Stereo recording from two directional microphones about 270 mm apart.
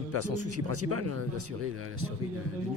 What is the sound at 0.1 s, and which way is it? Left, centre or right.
Speech, right.